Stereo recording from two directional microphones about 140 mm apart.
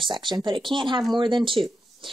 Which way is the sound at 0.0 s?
35° right (ahead or behind).